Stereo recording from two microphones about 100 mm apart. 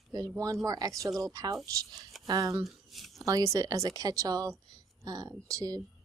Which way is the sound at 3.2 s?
30° right (ahead or behind).